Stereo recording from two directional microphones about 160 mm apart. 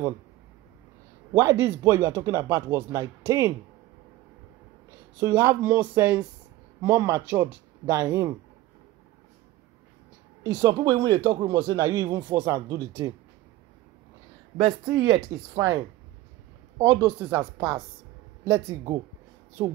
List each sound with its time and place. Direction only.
1.3 s speech: 20° right (ahead or behind)
5.2 s speech: 15° right (ahead or behind)
10.4 s speech: 25° right (ahead or behind)
14.9 s speech: 20° right (ahead or behind)